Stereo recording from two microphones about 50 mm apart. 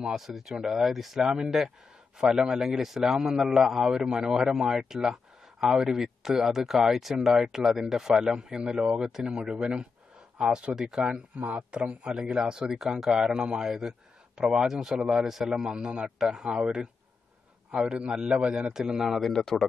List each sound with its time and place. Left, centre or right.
0.0 s a man's voice: centre
17.9 s a man's voice: centre
19.1 s a man's voice: centre